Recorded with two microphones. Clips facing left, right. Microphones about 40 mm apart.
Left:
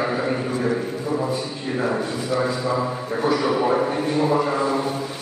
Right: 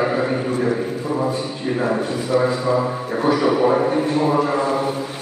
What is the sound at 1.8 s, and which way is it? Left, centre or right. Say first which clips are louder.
A man's voice: right 1 dB; centre.